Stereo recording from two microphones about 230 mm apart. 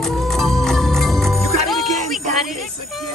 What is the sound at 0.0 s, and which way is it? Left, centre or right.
Music, centre.